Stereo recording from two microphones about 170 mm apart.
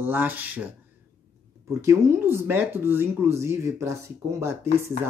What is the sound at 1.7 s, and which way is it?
Speech, 15° right (ahead or behind).